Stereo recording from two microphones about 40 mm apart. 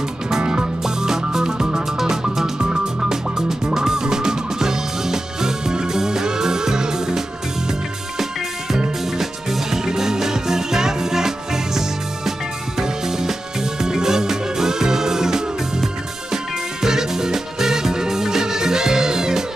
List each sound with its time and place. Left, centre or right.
0.4 s music: right
8.7 s music: centre